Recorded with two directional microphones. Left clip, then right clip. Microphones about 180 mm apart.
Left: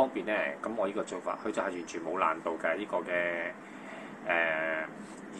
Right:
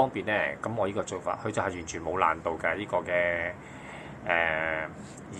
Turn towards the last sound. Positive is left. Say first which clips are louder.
# right 3 dB
turn(degrees=-35)  # may be behind; listen again after turning